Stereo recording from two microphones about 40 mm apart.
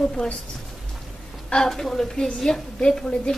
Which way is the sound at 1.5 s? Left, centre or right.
Centre.